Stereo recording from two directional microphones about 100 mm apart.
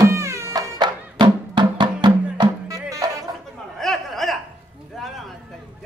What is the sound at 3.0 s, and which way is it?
Chatter, 40° right (ahead or behind).